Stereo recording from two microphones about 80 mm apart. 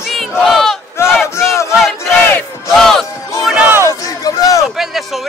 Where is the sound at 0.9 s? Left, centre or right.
Left.